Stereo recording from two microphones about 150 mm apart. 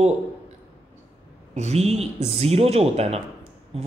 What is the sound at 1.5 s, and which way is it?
Speech, 45° right (ahead or behind).